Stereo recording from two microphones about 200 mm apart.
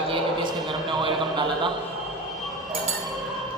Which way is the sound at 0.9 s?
25° right (ahead or behind).